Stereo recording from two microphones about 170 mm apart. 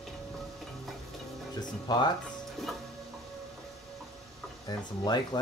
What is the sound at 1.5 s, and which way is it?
Music, 25° left (ahead or behind).